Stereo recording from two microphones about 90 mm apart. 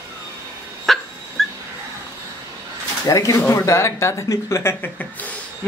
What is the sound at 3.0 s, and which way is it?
Speech, 40° left (ahead or behind).